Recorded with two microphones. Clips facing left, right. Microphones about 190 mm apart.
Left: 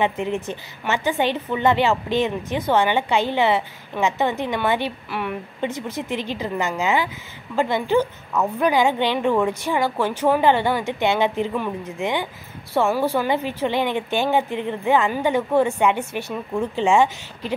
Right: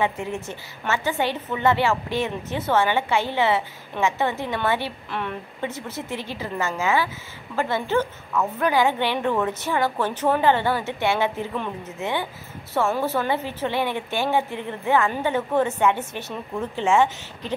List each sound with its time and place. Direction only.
0.0 s speech: 20° left (ahead or behind)